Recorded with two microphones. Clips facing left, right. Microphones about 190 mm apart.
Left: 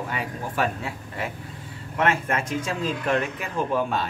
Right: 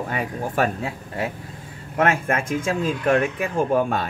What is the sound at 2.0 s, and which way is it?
Speech, 50° right (ahead or behind).